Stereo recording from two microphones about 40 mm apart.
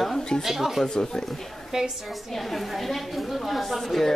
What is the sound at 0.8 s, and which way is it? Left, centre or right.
Speech, centre.